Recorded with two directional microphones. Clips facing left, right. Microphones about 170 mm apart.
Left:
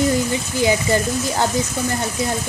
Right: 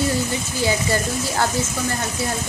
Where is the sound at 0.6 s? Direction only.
15° left (ahead or behind).